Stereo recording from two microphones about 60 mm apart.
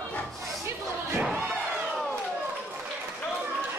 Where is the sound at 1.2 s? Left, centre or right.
Right.